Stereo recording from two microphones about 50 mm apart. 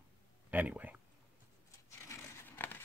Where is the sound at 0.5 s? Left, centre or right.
Right.